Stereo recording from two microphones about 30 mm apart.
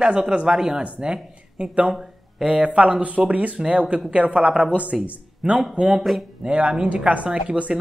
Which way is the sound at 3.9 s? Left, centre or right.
Right.